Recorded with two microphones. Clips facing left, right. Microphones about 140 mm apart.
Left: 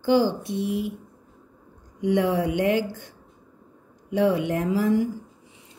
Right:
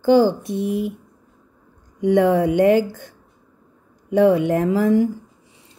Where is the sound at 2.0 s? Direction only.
50° right (ahead or behind).